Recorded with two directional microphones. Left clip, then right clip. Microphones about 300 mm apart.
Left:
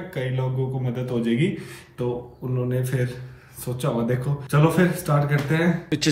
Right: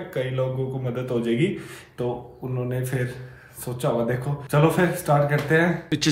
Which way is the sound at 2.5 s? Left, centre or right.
Centre.